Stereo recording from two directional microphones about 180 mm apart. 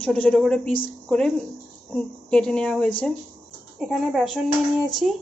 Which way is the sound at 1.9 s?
5° left (ahead or behind).